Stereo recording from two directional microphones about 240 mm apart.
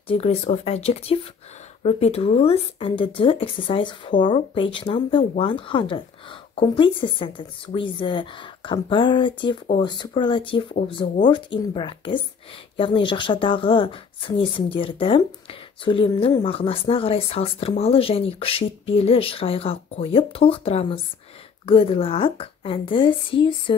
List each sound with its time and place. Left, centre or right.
0.1 s speech: left